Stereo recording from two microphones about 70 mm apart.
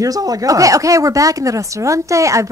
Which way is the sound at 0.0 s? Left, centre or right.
Right.